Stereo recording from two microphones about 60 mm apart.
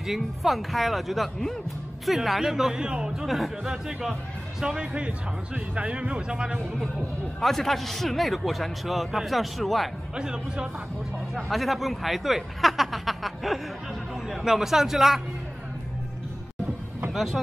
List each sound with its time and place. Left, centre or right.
0.0 s a man's voice: centre
3.3 s speech: centre
5.8 s speech: centre
7.3 s a man's voice: centre
10.1 s speech: centre
11.3 s a man's voice: centre
17.1 s speech: centre